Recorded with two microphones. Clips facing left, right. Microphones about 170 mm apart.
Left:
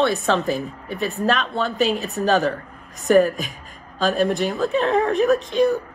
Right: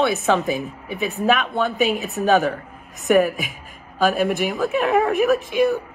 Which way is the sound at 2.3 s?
Centre (ahead or behind).